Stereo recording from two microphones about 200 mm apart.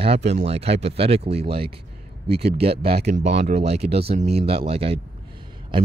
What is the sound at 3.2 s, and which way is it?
Speech, 60° right (ahead or behind).